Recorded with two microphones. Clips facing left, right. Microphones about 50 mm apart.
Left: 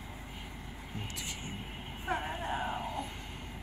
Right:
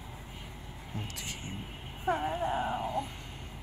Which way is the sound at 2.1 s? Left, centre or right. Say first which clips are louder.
Right 4 dB; centre.